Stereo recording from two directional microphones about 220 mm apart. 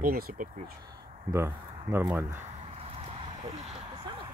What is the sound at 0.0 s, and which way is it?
Speech, 40° right (ahead or behind).